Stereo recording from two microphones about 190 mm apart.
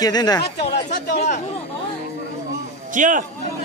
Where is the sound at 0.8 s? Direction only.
40° left (ahead or behind).